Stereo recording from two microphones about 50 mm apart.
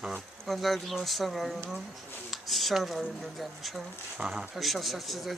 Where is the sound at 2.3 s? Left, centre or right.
Centre.